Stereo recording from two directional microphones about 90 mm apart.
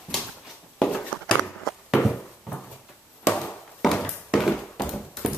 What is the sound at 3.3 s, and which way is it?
Chop, 5° left (ahead or behind).